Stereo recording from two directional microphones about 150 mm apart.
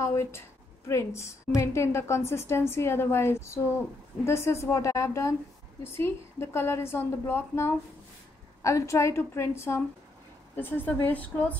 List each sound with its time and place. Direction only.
0.0 s a woman's voice: 20° left (ahead or behind)